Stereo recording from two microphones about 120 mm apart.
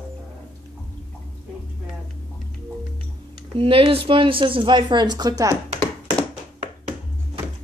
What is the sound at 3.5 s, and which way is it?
Speech, 50° right (ahead or behind).